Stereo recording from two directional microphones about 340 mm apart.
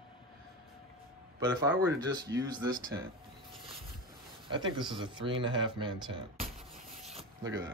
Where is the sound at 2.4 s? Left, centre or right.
Centre.